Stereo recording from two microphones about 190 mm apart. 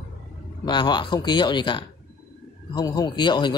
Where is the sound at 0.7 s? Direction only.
25° left (ahead or behind).